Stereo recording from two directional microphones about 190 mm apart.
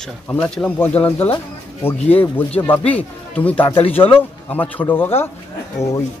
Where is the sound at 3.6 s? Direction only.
30° left (ahead or behind).